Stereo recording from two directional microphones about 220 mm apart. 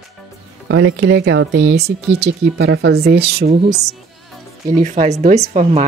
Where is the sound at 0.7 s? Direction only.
55° right (ahead or behind).